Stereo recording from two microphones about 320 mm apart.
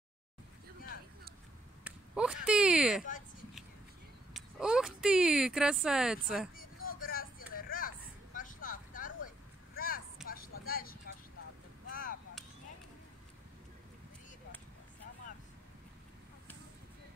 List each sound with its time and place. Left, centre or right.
1.9 s speech: centre
4.3 s speech: centre
6.9 s vehicle: left
7.5 s a sound: left
8.4 s vehicle: left
11.9 s a sound: left